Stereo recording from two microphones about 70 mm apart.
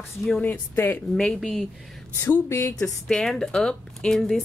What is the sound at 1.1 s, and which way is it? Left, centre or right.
Speech, centre.